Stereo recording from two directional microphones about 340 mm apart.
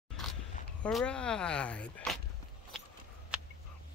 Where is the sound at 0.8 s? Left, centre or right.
Centre.